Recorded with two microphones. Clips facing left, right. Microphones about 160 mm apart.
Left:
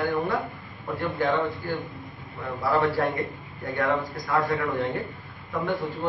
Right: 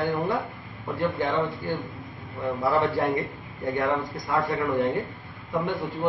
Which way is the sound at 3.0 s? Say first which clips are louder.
Right 1 dB; 20° right (ahead or behind).